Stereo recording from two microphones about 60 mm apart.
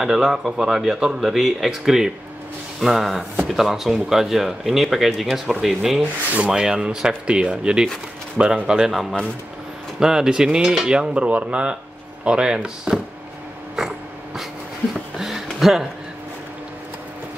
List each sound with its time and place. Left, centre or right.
0.0 s speech: centre
6.3 s speech: right
9.9 s speech: centre
13.7 s a sound: centre
15.6 s speech: centre